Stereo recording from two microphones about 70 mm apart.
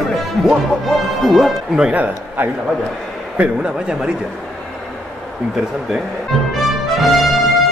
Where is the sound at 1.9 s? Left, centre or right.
Right.